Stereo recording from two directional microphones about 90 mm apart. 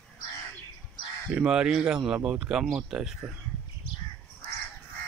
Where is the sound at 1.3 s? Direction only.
10° right (ahead or behind).